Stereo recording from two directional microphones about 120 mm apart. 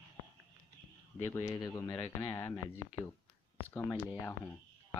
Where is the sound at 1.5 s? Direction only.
30° left (ahead or behind).